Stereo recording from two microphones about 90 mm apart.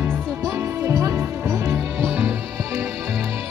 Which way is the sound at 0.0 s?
20° right (ahead or behind).